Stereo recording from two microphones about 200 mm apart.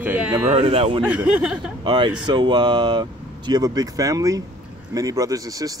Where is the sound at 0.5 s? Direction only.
30° right (ahead or behind).